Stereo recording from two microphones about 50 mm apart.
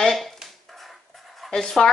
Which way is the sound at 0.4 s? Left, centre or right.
Centre.